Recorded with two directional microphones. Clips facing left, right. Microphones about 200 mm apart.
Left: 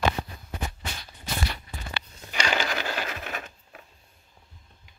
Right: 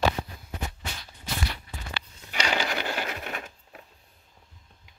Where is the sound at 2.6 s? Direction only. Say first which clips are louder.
Even; 15° right (ahead or behind).